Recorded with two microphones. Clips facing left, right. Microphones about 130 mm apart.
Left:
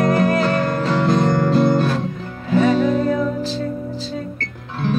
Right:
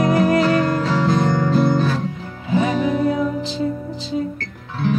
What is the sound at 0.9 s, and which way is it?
Music, centre (ahead or behind).